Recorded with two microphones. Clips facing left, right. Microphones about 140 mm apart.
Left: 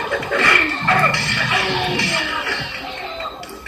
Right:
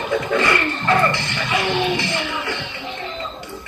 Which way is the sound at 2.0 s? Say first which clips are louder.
Even; 20° right (ahead or behind).